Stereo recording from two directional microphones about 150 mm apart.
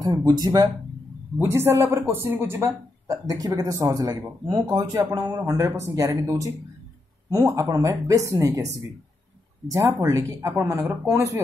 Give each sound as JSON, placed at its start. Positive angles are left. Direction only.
{"t": 0.0, "sound": "a woman's voice", "side_deg": -25}
{"t": 1.4, "sound": "a woman's voice", "side_deg": -15}
{"t": 9.7, "sound": "a woman's voice", "side_deg": -20}